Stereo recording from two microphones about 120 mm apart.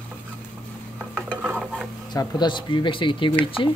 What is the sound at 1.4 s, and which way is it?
Stir, 5° right (ahead or behind).